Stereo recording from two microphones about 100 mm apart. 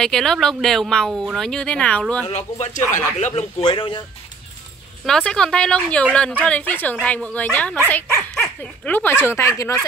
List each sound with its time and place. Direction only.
0.0 s speech: 5° left (ahead or behind)
1.5 s a woman's voice: 10° left (ahead or behind)
2.2 s speech: 90° left
2.8 s a woman's voice: 15° left (ahead or behind)
3.3 s speech: 80° left; by 4.0 s 60° left (ahead or behind)
5.0 s a woman's voice: 5° left (ahead or behind); by 9.8 s 30° left (ahead or behind)